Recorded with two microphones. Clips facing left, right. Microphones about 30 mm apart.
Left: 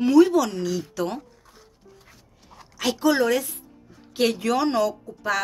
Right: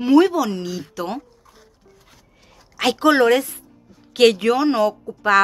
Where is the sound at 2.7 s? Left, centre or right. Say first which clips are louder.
Right 5 dB; right.